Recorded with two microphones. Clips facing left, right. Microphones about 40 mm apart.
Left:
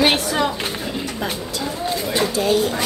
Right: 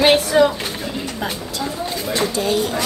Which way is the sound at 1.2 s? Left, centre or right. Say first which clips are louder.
Even; centre.